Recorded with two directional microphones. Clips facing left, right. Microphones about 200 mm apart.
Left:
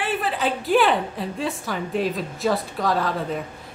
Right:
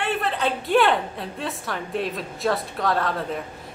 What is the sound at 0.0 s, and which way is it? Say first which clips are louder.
A woman's voice: even; centre (ahead or behind).